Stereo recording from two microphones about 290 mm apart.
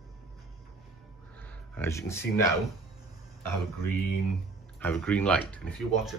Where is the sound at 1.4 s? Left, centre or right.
Centre.